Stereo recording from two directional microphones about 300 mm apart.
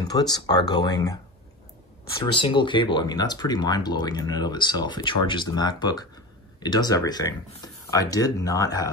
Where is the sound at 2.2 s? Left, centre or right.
Centre.